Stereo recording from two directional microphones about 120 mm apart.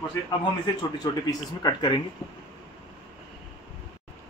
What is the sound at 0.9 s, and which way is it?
Speech, 35° left (ahead or behind).